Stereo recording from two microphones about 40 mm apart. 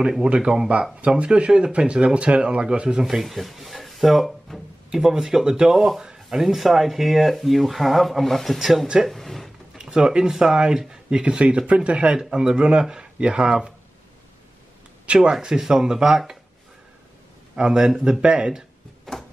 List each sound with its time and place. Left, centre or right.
0.2 s speech: right
1.0 s speech: right
3.1 s speech: centre
9.8 s speech: centre
12.2 s speech: centre
15.1 s speech: right
15.4 s speech: centre
17.6 s speech: centre
19.1 s a sound: centre